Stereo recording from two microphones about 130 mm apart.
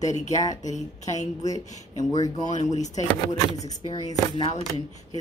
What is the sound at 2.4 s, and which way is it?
Speech, 65° left (ahead or behind).